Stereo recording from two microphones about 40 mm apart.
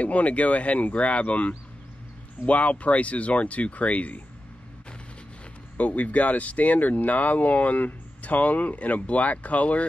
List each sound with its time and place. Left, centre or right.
0.0 s speech: left
5.8 s speech: left